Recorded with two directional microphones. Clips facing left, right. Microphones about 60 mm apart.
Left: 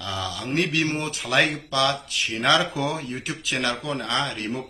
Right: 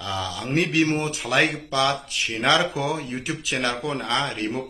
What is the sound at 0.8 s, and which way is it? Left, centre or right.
Speech, right.